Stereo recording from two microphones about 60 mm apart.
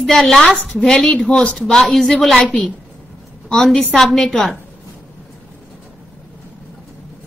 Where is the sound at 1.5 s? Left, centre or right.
Centre.